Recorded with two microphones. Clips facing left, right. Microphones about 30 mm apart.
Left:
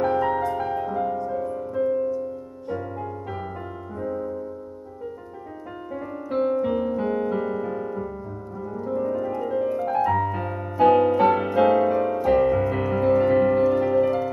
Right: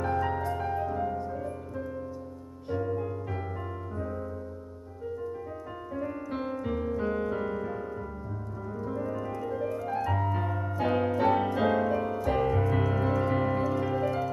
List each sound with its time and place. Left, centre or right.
0.0 s music: left
4.0 s music: centre
6.3 s piano: centre
8.8 s music: centre